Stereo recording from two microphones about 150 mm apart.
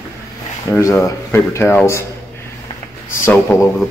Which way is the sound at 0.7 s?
20° left (ahead or behind).